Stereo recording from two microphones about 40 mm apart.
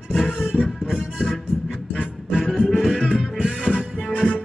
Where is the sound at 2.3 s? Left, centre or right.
Centre.